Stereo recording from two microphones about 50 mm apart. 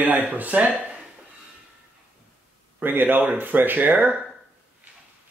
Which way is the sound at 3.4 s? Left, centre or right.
Right.